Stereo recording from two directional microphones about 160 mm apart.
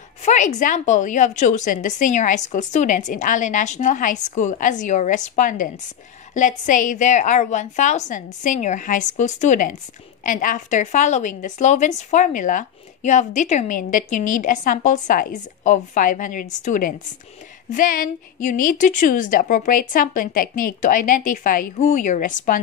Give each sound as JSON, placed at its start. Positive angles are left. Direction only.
{"t": 0.2, "sound": "a woman's voice", "side_deg": 45}